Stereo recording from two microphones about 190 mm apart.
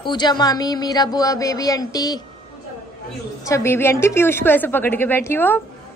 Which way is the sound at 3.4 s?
15° left (ahead or behind).